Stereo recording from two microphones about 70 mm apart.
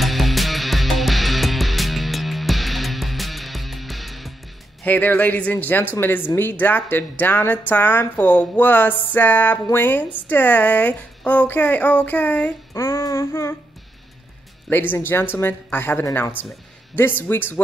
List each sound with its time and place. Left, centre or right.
0.0 s music: centre
4.8 s speech: left
12.7 s a sound: left
14.7 s a woman's voice: left
17.3 s a woman's voice: left